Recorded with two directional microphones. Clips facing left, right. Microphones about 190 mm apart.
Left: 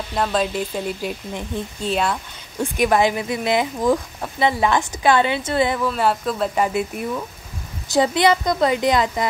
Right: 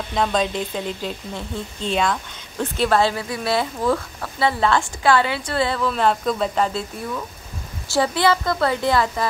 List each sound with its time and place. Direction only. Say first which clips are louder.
0.1 s speech: even; 5° left (ahead or behind)
6.6 s speech: left 2 dB; 15° left (ahead or behind)